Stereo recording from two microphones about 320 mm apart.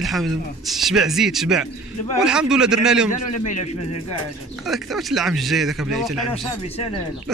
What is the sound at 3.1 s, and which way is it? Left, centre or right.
Speech, left.